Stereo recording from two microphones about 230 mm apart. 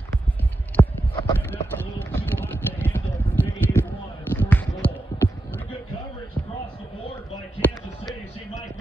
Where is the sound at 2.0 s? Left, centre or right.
Centre.